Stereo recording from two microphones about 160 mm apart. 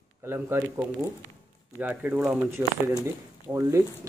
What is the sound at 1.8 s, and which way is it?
Speech, 10° right (ahead or behind).